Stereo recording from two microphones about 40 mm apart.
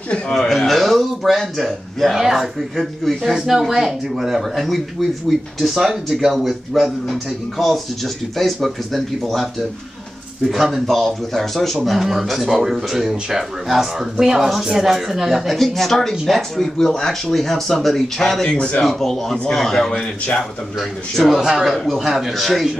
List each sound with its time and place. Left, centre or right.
0.3 s speech: centre
2.1 s speech: centre
2.8 s speech: centre
3.3 s speech: centre
10.5 s speech: centre
15.4 s speech: centre
21.4 s speech: centre